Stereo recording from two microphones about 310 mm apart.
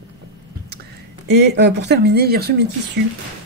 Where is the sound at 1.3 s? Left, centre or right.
Right.